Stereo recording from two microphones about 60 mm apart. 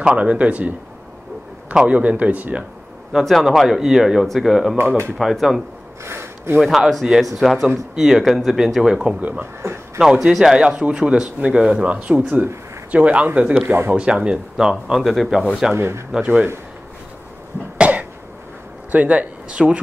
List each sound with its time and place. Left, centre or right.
0.0 s speech: centre
3.1 s a man's voice: centre
4.7 s speech: right
5.1 s speech: centre
6.0 s a sound: right
6.6 s speech: centre
9.6 s speech: right
9.9 s speech: centre
15.7 s speech: right
16.3 s speech: right
17.7 s cough: right
18.9 s speech: right